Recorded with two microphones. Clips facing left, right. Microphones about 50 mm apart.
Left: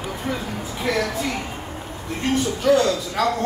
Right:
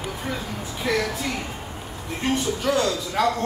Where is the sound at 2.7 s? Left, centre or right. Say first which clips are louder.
Left 6 dB; centre.